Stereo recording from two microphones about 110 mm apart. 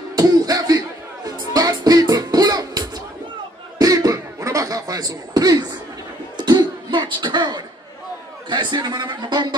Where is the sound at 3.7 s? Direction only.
30° right (ahead or behind).